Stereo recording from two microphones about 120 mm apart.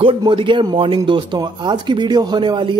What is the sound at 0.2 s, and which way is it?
Speech, 45° right (ahead or behind).